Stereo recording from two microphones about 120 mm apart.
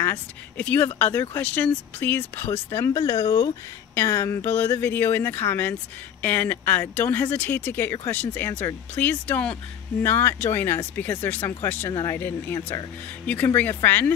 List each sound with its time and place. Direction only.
0.0 s speech: 15° left (ahead or behind)
2.7 s speech: 30° left (ahead or behind)
3.9 s speech: 20° left (ahead or behind)
11.9 s speech: 30° left (ahead or behind)
12.2 s speech: 15° left (ahead or behind)